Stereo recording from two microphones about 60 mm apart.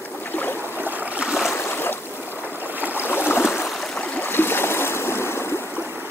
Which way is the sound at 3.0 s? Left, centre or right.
Left.